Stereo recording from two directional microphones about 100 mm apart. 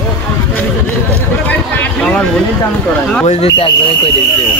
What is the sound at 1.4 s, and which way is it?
Speech, 15° left (ahead or behind).